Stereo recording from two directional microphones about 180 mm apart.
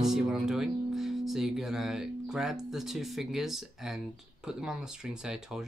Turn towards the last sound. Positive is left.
turn(degrees=-5)  # may be behind; listen again after turning